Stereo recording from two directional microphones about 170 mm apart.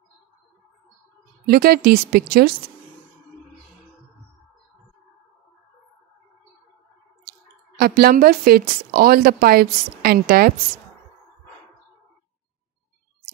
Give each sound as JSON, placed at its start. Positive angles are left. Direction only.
{"t": 1.4, "sound": "speech", "side_deg": -65}
{"t": 7.8, "sound": "speech", "side_deg": -60}